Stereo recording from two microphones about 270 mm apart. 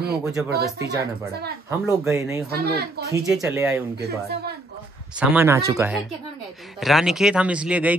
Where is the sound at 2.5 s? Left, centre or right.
Right.